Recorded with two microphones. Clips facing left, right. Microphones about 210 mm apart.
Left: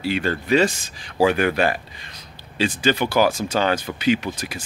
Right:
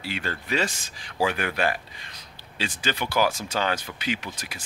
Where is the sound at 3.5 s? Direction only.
35° left (ahead or behind).